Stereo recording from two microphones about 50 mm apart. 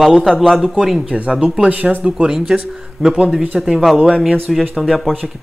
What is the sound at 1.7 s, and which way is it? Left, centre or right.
Speech, right.